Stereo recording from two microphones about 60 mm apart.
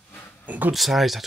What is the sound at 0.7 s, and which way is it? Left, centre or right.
Speech, centre.